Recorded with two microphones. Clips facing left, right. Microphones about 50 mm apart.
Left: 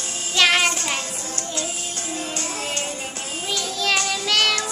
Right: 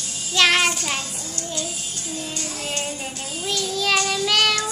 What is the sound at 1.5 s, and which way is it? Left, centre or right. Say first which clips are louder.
Music: left 2 dB; left.